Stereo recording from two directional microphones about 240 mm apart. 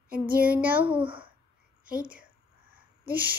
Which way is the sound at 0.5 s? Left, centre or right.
Centre.